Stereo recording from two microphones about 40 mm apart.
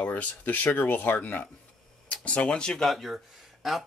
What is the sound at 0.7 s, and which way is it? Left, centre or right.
Speech, left.